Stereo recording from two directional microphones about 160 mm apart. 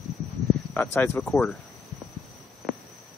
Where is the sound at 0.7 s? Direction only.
10° left (ahead or behind).